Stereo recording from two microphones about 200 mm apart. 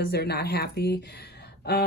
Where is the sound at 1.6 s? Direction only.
55° left (ahead or behind).